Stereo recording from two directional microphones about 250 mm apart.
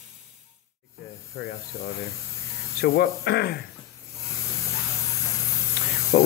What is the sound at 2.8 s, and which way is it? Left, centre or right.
Speech, left.